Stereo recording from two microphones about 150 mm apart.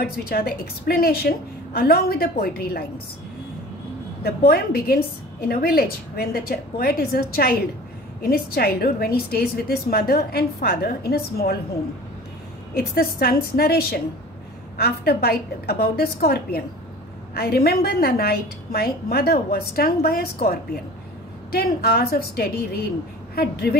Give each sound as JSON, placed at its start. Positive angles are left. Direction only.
{"t": 0.0, "sound": "a woman's voice", "side_deg": 90}
{"t": 4.2, "sound": "a woman's voice", "side_deg": 90}
{"t": 12.7, "sound": "a woman's voice", "side_deg": 85}